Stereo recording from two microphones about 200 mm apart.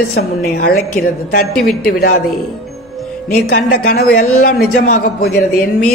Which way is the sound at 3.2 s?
50° left (ahead or behind).